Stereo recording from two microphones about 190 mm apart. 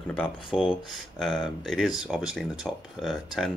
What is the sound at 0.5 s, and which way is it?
Speech, centre (ahead or behind).